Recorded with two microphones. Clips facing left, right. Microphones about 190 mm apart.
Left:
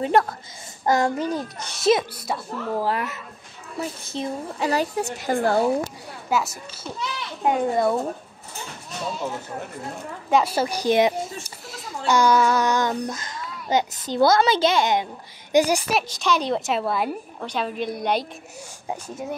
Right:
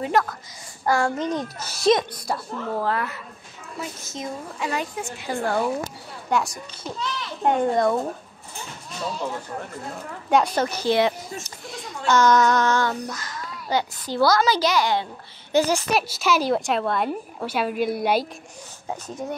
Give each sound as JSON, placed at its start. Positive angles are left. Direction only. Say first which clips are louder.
{"t": 0.0, "sound": "a woman's voice", "louder": "left 2 dB", "side_deg": 30}
{"t": 0.8, "sound": "a woman's voice", "louder": "left 1 dB", "side_deg": 20}
{"t": 2.9, "sound": "a woman's voice", "louder": "even", "side_deg": 20}
{"t": 4.1, "sound": "a woman's voice", "louder": "left 4 dB", "side_deg": 35}
{"t": 6.3, "sound": "a woman's voice", "louder": "even", "side_deg": 5}
{"t": 10.3, "sound": "a child's voice", "louder": "even", "side_deg": 5}
{"t": 12.1, "sound": "child singing", "louder": "right 1 dB", "side_deg": 10}
{"t": 14.0, "sound": "a woman's voice", "louder": "left 1 dB", "side_deg": 25}
{"t": 15.9, "sound": "a woman's voice", "louder": "right 1 dB", "side_deg": -5}
{"t": 18.9, "sound": "a child's voice", "louder": "even", "side_deg": 10}